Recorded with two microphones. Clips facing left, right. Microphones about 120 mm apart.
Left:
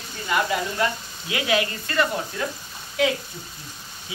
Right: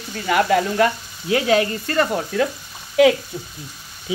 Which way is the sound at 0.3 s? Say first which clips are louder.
Right 7 dB; 65° right (ahead or behind).